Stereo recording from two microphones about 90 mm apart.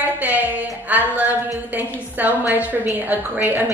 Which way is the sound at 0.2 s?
20° right (ahead or behind).